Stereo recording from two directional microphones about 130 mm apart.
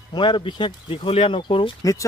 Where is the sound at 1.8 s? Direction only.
25° left (ahead or behind).